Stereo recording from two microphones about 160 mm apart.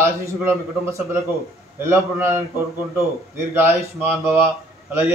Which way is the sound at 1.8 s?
15° right (ahead or behind).